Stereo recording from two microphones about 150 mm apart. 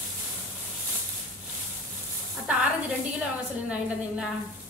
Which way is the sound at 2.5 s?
10° right (ahead or behind).